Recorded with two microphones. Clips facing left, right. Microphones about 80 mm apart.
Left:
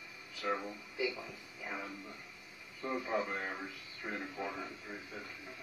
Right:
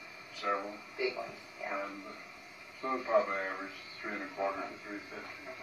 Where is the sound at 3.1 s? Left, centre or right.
Right.